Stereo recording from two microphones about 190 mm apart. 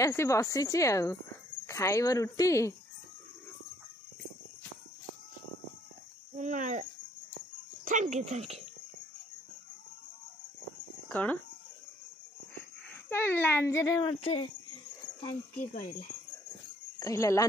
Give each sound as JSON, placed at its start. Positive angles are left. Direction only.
{"t": 0.0, "sound": "a child's voice", "side_deg": 15}
{"t": 6.3, "sound": "speech", "side_deg": -40}
{"t": 11.1, "sound": "speech", "side_deg": 10}
{"t": 12.9, "sound": "a child's voice", "side_deg": 10}
{"t": 14.2, "sound": "speech", "side_deg": 30}
{"t": 15.5, "sound": "speech", "side_deg": 45}
{"t": 17.0, "sound": "a child's voice", "side_deg": 15}